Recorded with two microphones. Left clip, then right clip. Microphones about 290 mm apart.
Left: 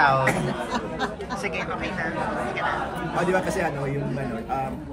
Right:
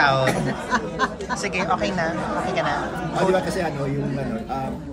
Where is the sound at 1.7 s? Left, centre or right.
Centre.